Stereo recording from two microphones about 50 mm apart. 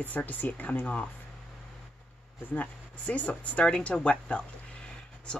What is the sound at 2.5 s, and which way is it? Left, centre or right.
Speech, left.